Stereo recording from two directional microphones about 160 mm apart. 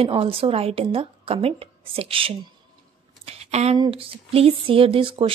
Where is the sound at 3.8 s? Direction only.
35° right (ahead or behind).